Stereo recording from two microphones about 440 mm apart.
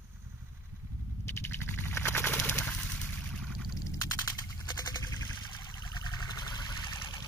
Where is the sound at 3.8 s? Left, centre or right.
Centre.